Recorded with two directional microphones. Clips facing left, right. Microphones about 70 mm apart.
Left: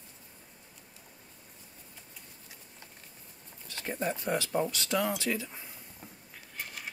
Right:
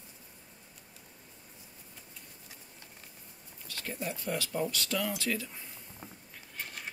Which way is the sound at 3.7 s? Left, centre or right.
Left.